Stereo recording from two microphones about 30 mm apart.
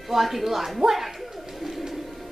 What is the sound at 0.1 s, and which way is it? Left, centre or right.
Speech, centre.